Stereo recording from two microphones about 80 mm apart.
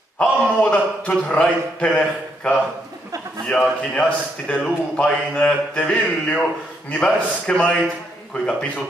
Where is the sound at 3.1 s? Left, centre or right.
Right.